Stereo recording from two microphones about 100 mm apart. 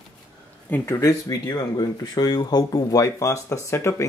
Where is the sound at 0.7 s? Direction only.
20° left (ahead or behind).